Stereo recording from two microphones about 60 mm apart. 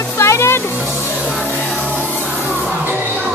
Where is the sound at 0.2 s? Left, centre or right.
Left.